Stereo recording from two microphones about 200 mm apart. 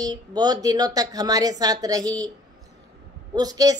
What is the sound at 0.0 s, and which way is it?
A woman's voice, 20° right (ahead or behind).